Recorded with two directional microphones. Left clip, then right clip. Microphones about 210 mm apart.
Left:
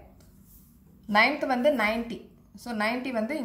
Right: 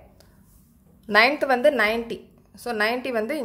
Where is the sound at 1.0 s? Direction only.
55° right (ahead or behind).